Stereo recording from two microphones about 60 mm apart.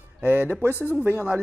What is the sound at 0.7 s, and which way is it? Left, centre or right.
Speech, left.